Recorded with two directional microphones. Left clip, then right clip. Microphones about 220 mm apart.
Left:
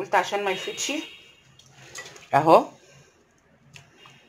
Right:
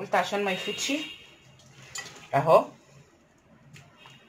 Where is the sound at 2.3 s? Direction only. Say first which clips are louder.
Left 4 dB; 50° left (ahead or behind).